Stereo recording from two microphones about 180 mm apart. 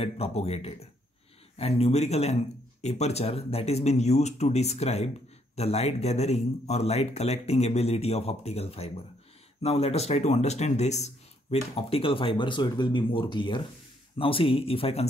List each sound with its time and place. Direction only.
0.0 s speech: 35° left (ahead or behind)